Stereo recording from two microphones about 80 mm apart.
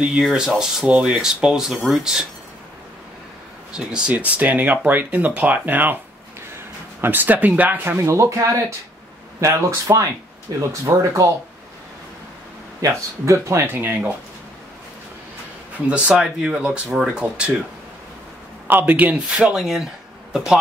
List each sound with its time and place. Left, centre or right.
0.2 s speech: centre
3.7 s speech: centre
7.0 s speech: right
8.0 s speech: right
12.8 s speech: right
15.9 s speech: centre
18.7 s speech: right
19.2 s speech: centre